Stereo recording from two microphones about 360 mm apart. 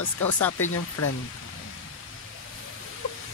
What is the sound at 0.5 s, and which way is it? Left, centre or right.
Speech, left.